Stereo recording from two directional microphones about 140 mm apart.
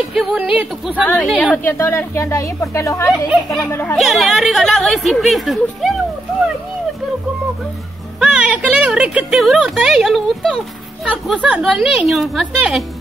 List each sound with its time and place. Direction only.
0.1 s speech: centre (ahead or behind)
1.0 s speech: 5° left (ahead or behind); by 3.1 s 20° left (ahead or behind)
3.1 s speech: centre (ahead or behind)
8.2 s speech: 5° right (ahead or behind)